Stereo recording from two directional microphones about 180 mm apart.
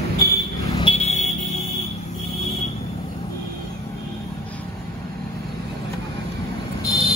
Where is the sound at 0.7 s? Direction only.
35° left (ahead or behind).